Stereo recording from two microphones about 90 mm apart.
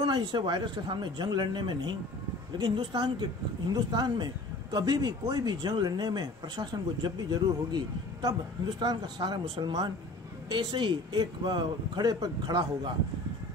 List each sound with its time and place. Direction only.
0.0 s speech: 55° right (ahead or behind)